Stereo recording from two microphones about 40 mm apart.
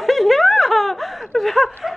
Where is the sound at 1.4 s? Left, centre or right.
Centre.